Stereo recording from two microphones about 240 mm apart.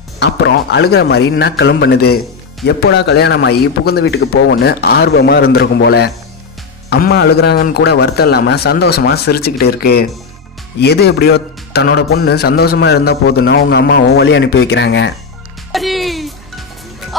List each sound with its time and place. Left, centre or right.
0.2 s a man's voice: left
15.7 s music: centre